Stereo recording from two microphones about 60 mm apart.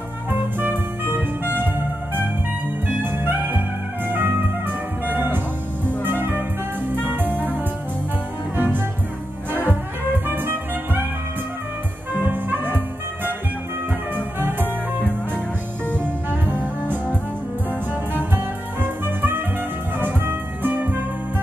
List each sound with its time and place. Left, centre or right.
0.3 s music: right
3.0 s music: right
9.5 s music: right
12.1 s music: right
16.0 s music: right
18.1 s music: right